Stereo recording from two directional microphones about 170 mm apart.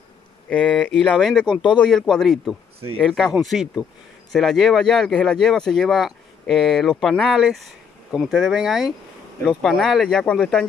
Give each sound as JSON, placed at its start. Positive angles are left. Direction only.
{"t": 0.5, "sound": "speech", "side_deg": 5}
{"t": 1.5, "sound": "speech", "side_deg": 30}
{"t": 1.8, "sound": "speech", "side_deg": 5}